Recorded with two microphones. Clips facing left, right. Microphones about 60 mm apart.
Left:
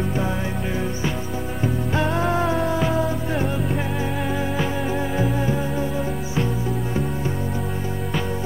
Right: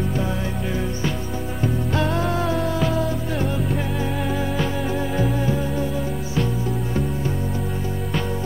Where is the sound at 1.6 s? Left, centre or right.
Centre.